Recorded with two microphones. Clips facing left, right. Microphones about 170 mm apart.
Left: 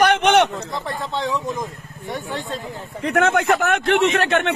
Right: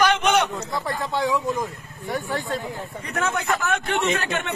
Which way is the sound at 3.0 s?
85° left.